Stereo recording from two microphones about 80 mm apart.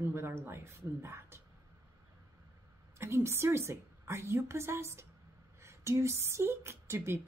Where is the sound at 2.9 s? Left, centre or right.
Right.